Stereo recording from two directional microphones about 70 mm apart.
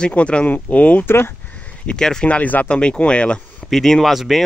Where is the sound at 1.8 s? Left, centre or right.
Centre.